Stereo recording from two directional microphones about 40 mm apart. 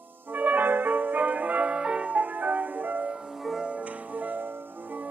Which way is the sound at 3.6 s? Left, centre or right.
Right.